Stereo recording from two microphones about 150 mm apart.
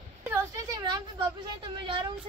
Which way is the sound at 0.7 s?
25° right (ahead or behind).